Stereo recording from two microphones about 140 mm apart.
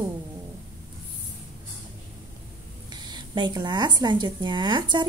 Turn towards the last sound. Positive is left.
turn(degrees=-30)  # may be behind; listen again after turning